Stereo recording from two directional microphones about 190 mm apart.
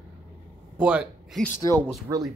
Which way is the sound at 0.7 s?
5° right (ahead or behind).